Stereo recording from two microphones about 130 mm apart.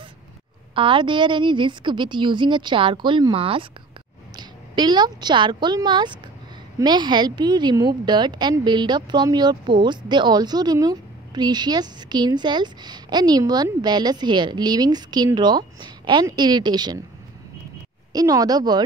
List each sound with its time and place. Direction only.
0.7 s a woman's voice: 40° right (ahead or behind)
18.1 s speech: 30° right (ahead or behind)